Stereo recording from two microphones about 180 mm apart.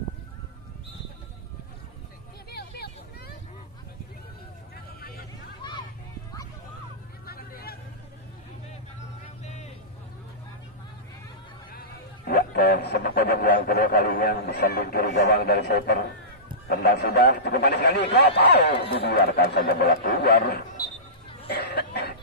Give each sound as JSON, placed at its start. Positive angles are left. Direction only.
{"t": 2.5, "sound": "vehicle", "side_deg": 60}
{"t": 5.6, "sound": "a sound", "side_deg": 25}
{"t": 7.2, "sound": "hubbub", "side_deg": 60}
{"t": 12.3, "sound": "a man's voice", "side_deg": 60}
{"t": 21.5, "sound": "cough", "side_deg": 60}